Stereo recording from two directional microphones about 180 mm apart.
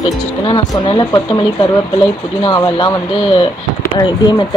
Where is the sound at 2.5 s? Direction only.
25° left (ahead or behind).